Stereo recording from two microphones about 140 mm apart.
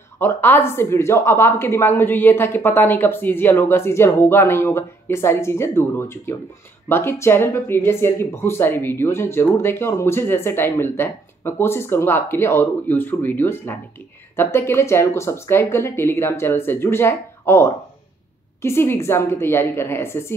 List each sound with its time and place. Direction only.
0.2 s speech: 15° left (ahead or behind)